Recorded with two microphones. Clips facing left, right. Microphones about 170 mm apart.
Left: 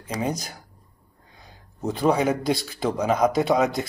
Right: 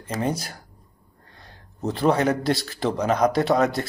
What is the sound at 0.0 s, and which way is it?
Speech, 5° right (ahead or behind).